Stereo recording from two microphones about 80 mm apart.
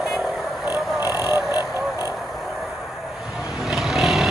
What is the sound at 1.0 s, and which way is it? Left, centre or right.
Vehicle, right.